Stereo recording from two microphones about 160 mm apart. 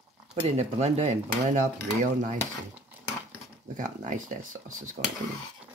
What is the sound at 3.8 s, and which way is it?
Dishes, 50° right (ahead or behind).